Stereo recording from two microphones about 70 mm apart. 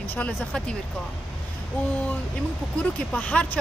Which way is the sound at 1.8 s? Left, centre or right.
Left.